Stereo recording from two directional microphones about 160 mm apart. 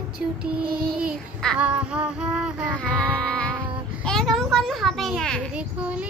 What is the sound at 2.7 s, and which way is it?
A child's voice, 5° left (ahead or behind).